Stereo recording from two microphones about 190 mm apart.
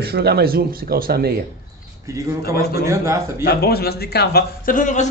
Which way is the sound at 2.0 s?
15° right (ahead or behind).